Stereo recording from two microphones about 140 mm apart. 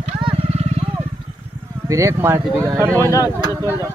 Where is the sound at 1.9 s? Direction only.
20° right (ahead or behind).